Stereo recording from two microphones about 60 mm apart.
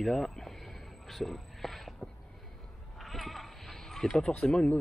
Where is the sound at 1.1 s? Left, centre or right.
Centre.